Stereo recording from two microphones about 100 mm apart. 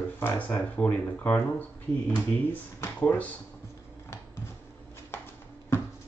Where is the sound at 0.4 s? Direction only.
15° left (ahead or behind).